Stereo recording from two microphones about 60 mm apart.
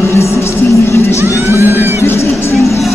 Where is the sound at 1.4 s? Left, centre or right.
Right.